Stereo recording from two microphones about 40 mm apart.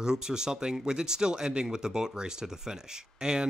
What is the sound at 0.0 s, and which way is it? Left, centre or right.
Speech, centre.